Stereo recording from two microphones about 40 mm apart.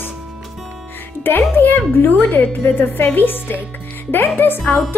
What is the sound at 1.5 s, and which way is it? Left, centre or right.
A woman's voice, left.